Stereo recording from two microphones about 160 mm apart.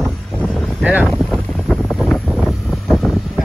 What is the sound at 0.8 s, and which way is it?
Speech, 10° right (ahead or behind).